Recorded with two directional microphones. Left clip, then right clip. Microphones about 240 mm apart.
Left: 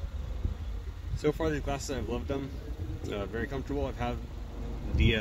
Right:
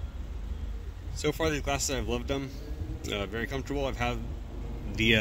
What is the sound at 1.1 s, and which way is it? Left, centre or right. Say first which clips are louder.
Speech: right 1 dB; right.